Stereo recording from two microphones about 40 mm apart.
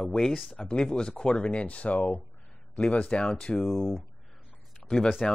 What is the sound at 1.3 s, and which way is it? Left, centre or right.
Speech, left.